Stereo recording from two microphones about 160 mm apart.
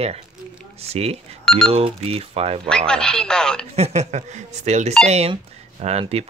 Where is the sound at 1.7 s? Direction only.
35° right (ahead or behind).